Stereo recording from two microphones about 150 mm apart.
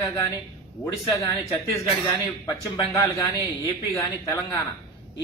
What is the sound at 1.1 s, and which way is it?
Speech, 20° left (ahead or behind).